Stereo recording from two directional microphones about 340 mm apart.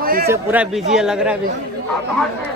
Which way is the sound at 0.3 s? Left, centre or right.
Centre.